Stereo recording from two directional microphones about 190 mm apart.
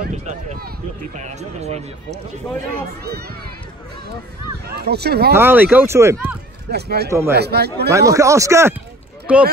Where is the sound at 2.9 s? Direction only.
55° right (ahead or behind).